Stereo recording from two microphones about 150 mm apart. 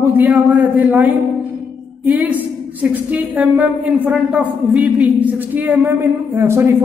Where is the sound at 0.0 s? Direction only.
15° right (ahead or behind).